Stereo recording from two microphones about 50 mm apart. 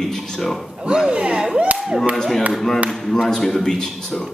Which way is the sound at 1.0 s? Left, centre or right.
Right.